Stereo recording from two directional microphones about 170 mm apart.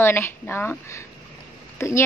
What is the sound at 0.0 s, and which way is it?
A woman's voice, 15° left (ahead or behind).